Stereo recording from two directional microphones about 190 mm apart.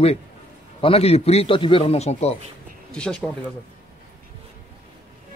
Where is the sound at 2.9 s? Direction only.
5° left (ahead or behind).